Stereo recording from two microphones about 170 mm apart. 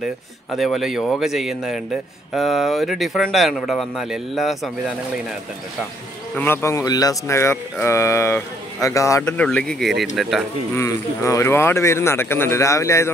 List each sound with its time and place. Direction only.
0.5 s speech: centre (ahead or behind)
6.3 s speech: 15° left (ahead or behind)
9.2 s speech: 10° left (ahead or behind)
10.7 s speech: 20° left (ahead or behind)